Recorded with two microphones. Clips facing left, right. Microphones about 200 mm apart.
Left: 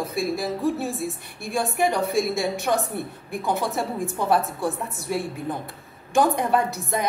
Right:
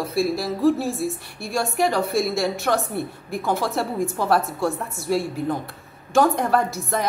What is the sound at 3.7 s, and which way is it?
Speech, centre (ahead or behind).